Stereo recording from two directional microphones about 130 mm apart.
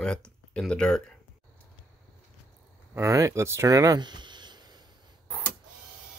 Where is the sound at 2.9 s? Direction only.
25° right (ahead or behind).